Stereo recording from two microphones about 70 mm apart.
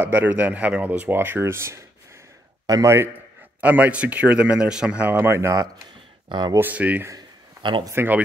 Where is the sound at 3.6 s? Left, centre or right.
Right.